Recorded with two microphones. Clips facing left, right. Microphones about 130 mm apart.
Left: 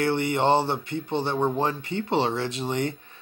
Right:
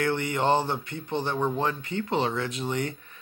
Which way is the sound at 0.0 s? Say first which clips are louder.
Left 3 dB; 30° left (ahead or behind).